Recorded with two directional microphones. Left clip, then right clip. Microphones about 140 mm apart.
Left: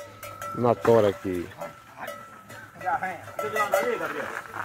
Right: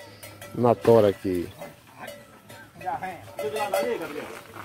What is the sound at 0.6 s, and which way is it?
Speech, 35° right (ahead or behind).